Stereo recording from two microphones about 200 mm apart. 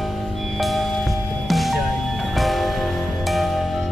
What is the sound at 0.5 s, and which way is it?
Music, centre (ahead or behind).